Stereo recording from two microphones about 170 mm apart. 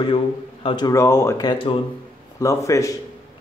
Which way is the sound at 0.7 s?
25° left (ahead or behind).